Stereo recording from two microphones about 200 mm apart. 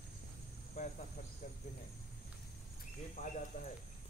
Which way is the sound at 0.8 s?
35° left (ahead or behind).